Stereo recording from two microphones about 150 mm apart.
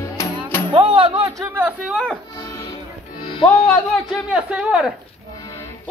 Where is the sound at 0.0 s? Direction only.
20° left (ahead or behind).